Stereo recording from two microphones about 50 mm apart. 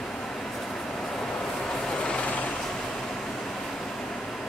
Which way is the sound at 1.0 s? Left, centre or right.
Centre.